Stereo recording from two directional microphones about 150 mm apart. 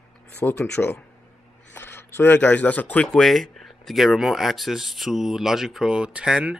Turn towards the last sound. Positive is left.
turn(degrees=-5)  # may be behind; listen again after turning